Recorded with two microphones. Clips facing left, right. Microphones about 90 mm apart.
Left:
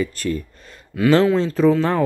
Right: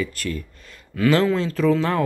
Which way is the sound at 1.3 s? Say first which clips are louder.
Left 4 dB; 25° left (ahead or behind).